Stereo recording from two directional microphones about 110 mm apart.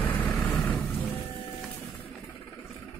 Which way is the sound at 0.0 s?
15° left (ahead or behind).